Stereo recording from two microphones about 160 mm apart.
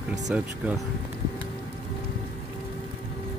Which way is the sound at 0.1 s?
Centre (ahead or behind).